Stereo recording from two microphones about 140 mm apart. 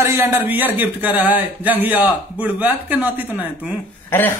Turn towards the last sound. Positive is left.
turn(degrees=15)  # may be behind; listen again after turning